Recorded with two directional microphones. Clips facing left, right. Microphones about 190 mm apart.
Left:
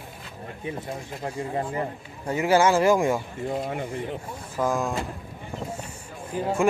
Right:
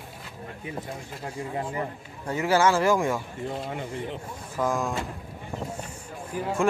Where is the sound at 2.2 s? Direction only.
15° left (ahead or behind).